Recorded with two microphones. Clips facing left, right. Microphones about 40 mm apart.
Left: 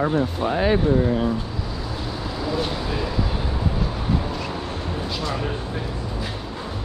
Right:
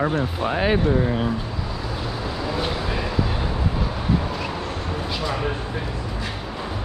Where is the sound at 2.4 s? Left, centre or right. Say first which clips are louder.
Left 1 dB; centre.